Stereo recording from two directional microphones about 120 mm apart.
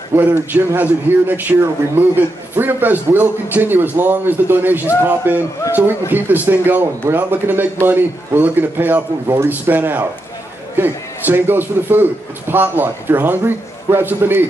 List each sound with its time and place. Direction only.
0.1 s a man's voice: 15° right (ahead or behind)